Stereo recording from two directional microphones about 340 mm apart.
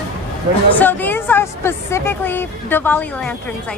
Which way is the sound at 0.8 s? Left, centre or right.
Centre.